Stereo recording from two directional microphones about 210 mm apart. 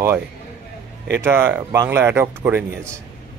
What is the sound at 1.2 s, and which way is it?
A man's voice, 10° right (ahead or behind).